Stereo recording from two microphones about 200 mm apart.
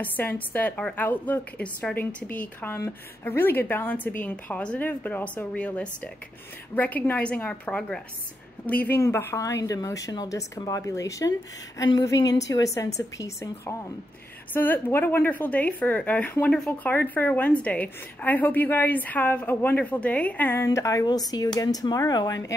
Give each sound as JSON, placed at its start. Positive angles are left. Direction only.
{"t": 0.2, "sound": "a woman's voice", "side_deg": 10}